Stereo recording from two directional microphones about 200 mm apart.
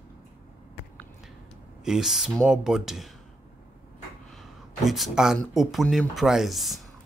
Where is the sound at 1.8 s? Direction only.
Centre (ahead or behind).